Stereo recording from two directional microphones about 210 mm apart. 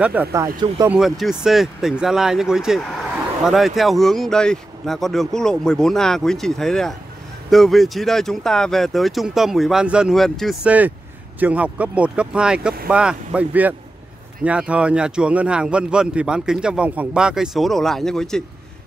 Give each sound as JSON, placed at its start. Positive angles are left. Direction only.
{"t": 0.0, "sound": "speech", "side_deg": -10}
{"t": 0.8, "sound": "speech", "side_deg": 0}